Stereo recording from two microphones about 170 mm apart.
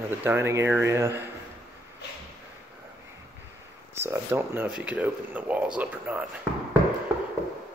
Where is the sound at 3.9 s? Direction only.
15° right (ahead or behind).